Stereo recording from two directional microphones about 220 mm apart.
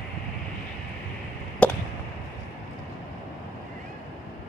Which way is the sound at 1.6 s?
5° left (ahead or behind).